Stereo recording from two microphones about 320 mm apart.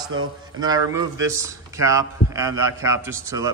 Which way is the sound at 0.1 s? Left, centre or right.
Right.